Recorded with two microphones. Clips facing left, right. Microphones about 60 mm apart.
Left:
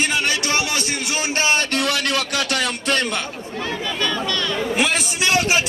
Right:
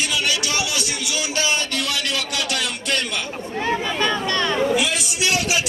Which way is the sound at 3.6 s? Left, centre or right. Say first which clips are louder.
Right 3 dB; right.